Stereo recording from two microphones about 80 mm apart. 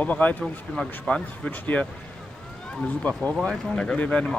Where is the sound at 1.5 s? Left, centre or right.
Left.